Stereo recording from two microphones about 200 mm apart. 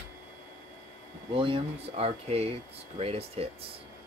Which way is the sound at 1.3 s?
25° right (ahead or behind).